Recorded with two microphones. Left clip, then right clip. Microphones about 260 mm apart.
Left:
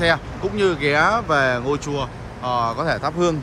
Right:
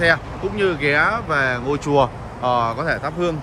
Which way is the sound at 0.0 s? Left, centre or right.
Centre.